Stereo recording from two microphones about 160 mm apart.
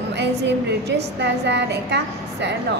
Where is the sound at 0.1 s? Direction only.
90° right.